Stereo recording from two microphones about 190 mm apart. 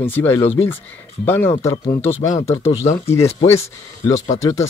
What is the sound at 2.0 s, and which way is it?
Speech, 35° left (ahead or behind).